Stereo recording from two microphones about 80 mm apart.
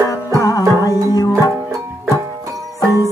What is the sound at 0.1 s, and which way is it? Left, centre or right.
Music, left.